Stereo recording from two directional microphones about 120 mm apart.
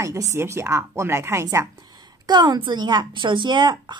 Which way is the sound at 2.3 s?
40° right (ahead or behind).